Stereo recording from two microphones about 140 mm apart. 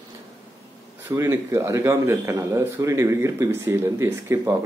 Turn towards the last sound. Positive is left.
turn(degrees=-20)  # may be behind; listen again after turning